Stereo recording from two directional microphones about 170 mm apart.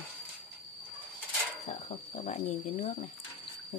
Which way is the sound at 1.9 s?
35° left (ahead or behind).